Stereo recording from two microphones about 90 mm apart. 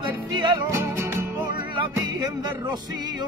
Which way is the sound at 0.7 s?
30° right (ahead or behind).